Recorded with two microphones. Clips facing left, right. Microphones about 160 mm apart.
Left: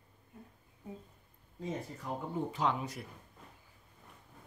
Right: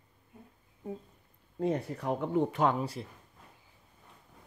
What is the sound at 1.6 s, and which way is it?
Speech, 65° right (ahead or behind).